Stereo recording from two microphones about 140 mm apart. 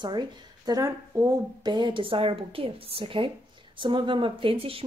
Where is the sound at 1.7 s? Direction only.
35° right (ahead or behind).